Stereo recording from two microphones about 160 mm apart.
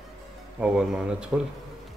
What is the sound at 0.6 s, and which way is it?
Speech, 5° right (ahead or behind).